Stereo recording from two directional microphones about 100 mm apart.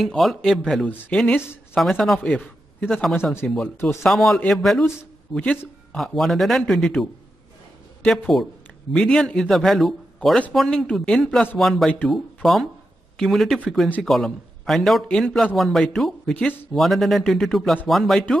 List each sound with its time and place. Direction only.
0.0 s a man's voice: centre (ahead or behind)
1.3 s speech: 25° left (ahead or behind)
1.8 s a man's voice: centre (ahead or behind)
2.2 s a sound: 15° left (ahead or behind)
2.9 s a man's voice: centre (ahead or behind)
4.0 s a man's voice: centre (ahead or behind)
8.2 s a man's voice: centre (ahead or behind)
13.2 s a man's voice: centre (ahead or behind)